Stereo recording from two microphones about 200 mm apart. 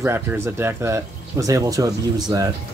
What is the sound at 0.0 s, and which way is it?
Speech, 10° right (ahead or behind).